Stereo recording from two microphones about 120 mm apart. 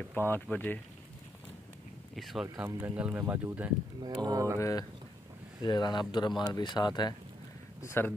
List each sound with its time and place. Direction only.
0.0 s speech: 15° left (ahead or behind)
2.1 s speech: centre (ahead or behind)
2.6 s speech: 15° right (ahead or behind)
4.0 s speech: 35° right (ahead or behind)
4.6 s speech: 25° left (ahead or behind)
7.8 s speech: 20° left (ahead or behind)